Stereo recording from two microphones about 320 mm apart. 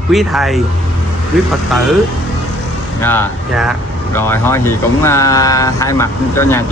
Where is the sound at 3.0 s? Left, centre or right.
Centre.